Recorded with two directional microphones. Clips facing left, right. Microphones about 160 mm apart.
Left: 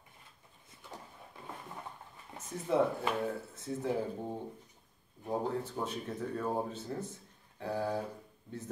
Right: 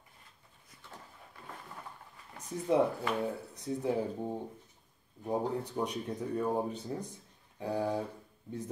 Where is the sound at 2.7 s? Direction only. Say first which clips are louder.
Right 1 dB; 15° right (ahead or behind).